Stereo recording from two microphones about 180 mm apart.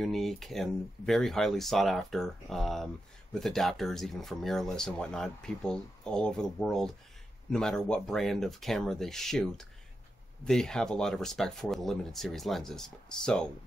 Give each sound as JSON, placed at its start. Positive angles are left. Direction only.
{"t": 0.0, "sound": "speech", "side_deg": 0}